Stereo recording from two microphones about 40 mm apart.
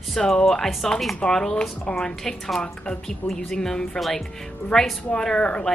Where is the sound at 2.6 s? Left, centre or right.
Left; by 4.9 s centre.